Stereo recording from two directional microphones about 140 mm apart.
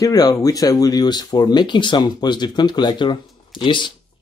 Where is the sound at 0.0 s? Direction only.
25° left (ahead or behind).